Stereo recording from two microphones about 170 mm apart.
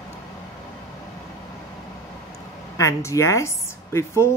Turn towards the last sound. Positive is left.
turn(degrees=15)  # may be behind; listen again after turning